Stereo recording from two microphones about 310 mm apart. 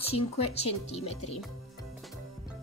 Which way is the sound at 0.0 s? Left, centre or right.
Centre.